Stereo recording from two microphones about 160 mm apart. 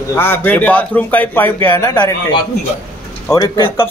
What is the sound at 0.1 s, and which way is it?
Speech, 15° left (ahead or behind).